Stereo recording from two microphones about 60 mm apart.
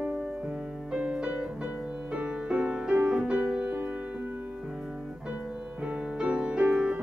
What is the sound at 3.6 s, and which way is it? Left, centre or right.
Music, right.